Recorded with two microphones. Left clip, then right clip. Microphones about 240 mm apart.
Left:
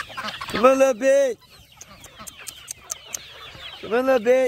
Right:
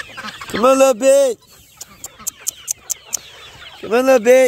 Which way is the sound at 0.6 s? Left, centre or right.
Right.